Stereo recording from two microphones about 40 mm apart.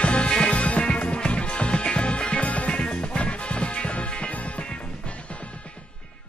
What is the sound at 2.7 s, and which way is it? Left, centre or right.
Music, left.